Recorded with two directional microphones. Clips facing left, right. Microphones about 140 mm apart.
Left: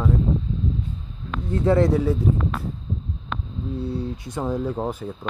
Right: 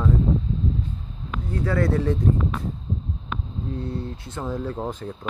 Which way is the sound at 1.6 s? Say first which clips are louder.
Left 6 dB; 25° left (ahead or behind).